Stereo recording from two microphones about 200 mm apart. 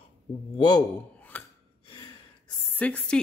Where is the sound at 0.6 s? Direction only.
20° left (ahead or behind).